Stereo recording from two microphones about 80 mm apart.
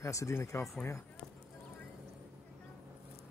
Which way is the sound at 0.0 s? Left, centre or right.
Left.